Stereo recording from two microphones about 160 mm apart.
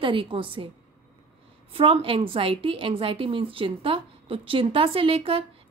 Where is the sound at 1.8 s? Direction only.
35° right (ahead or behind).